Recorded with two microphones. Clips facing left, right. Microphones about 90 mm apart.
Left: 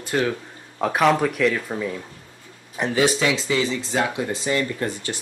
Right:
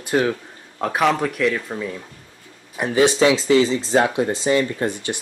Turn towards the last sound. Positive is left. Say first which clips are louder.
# right 3 dB
turn(degrees=-20)  # may be behind; listen again after turning